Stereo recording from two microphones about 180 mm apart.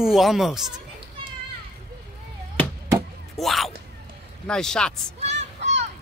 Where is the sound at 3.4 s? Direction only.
Centre (ahead or behind).